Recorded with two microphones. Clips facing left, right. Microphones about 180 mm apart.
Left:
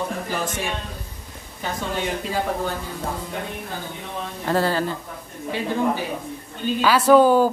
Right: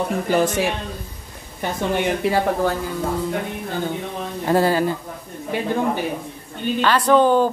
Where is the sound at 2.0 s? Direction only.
70° right (ahead or behind).